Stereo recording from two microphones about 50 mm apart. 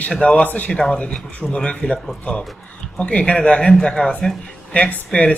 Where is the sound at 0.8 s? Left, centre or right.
Centre.